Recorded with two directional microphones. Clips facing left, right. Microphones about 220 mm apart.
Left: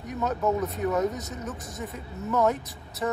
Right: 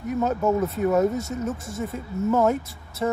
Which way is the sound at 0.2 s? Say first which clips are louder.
Right 3 dB; 30° right (ahead or behind).